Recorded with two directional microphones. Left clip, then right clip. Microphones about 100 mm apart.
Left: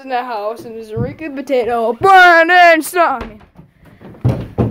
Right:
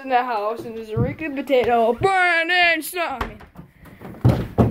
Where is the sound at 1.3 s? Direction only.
65° left (ahead or behind); by 3.1 s 90° left.